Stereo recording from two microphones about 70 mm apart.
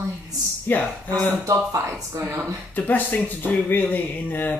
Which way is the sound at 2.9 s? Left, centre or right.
Left.